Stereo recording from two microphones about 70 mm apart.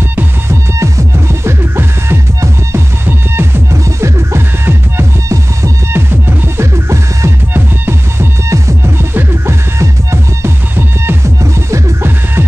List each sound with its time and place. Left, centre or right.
0.1 s music: right
0.7 s music: right
7.5 s music: right
8.5 s music: right